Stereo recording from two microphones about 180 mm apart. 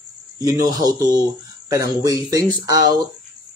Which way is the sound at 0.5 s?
20° right (ahead or behind).